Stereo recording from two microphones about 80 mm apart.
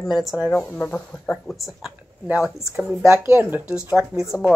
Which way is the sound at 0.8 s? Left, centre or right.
Left.